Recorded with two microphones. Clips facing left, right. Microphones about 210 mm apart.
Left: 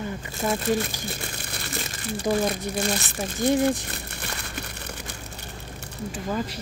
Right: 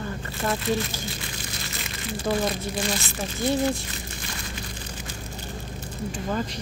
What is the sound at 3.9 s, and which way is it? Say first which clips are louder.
Crumpling: left 1 dB; 60° left (ahead or behind).